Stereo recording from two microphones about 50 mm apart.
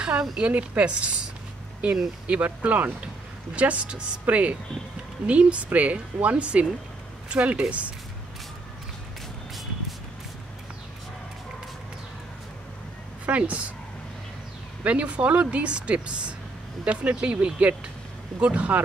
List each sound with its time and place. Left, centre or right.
0.0 s a woman's voice: centre
0.5 s speech: right
2.2 s speech: right
13.2 s speech: right
14.8 s speech: right